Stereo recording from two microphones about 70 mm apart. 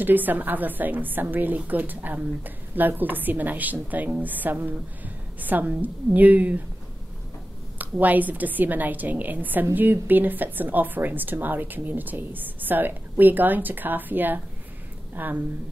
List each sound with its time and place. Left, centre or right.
0.0 s a woman's voice: right
7.8 s a woman's voice: right